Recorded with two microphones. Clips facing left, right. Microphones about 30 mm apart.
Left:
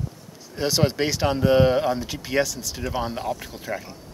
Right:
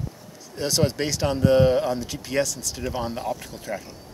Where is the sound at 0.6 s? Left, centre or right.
Centre.